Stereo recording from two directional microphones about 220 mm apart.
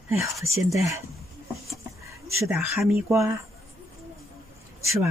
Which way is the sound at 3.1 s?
15° right (ahead or behind).